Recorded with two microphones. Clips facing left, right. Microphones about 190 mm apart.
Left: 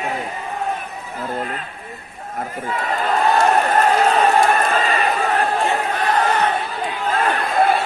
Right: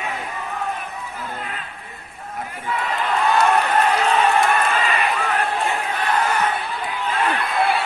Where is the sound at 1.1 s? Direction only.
45° left (ahead or behind).